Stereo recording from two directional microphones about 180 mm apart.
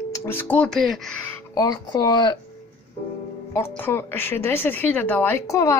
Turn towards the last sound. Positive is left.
turn(degrees=15)  # may be behind; listen again after turning